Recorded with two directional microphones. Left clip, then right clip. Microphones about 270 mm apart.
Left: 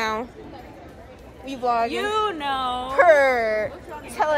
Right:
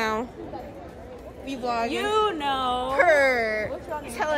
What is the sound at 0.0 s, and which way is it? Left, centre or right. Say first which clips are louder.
Chatter: left 1 dB; centre.